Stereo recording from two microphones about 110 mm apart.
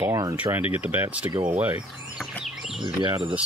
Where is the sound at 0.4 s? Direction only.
15° right (ahead or behind).